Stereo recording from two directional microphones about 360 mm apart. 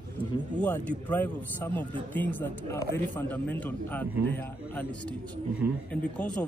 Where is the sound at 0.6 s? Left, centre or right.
Centre.